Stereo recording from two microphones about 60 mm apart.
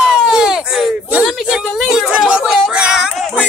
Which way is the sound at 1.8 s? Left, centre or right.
Centre.